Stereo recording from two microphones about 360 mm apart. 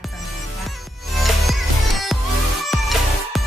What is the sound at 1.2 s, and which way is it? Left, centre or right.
Music, centre.